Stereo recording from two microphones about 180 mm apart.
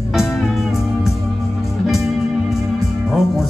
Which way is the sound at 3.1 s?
Centre (ahead or behind).